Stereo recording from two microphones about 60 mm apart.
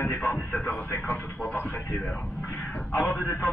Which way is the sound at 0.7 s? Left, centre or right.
Left.